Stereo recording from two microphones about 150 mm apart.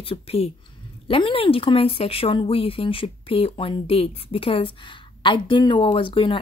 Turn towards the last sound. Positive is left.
turn(degrees=35)  # may be behind; listen again after turning